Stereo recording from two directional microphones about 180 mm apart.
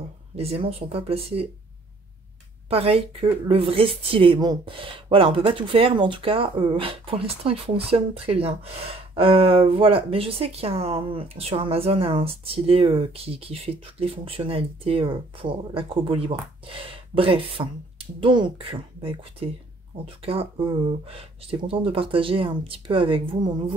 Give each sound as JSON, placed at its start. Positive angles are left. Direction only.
{"t": 0.4, "sound": "speech", "side_deg": -35}
{"t": 2.7, "sound": "speech", "side_deg": -35}